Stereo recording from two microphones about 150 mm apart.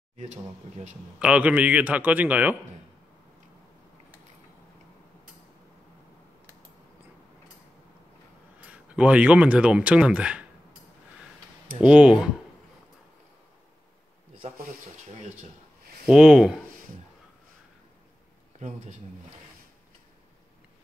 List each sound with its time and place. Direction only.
1.2 s a man's voice: 10° right (ahead or behind)
8.5 s speech: 10° right (ahead or behind)
11.8 s speech: 5° right (ahead or behind)
15.1 s speech: 50° right (ahead or behind)
16.1 s speech: 5° right (ahead or behind)